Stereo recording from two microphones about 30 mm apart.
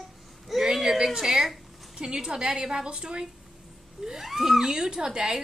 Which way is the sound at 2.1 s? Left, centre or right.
Right.